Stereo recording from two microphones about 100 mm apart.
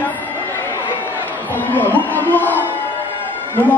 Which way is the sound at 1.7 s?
20° left (ahead or behind).